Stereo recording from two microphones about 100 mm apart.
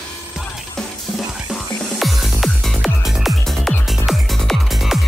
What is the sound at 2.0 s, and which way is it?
Music, centre (ahead or behind).